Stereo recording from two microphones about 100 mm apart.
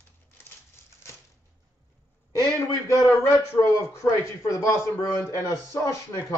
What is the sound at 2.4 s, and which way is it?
A man's voice, 35° left (ahead or behind).